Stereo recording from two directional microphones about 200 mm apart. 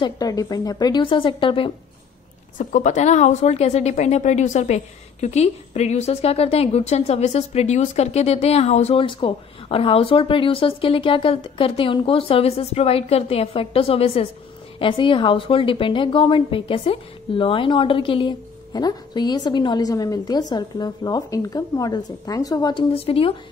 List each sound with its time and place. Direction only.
0.0 s a woman's voice: 20° left (ahead or behind)
2.5 s a woman's voice: 40° left (ahead or behind)